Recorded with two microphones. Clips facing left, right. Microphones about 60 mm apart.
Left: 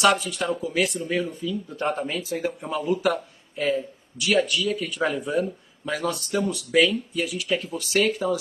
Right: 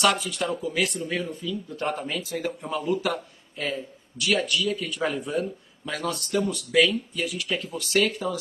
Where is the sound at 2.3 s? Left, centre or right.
Centre.